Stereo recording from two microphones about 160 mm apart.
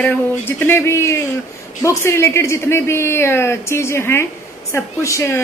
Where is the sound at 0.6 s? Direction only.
15° left (ahead or behind).